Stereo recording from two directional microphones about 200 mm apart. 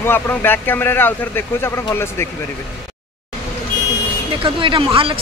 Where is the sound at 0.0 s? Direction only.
10° left (ahead or behind).